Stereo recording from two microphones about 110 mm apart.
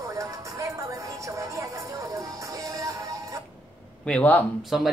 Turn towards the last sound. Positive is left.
turn(degrees=0)  # may be behind; listen again after turning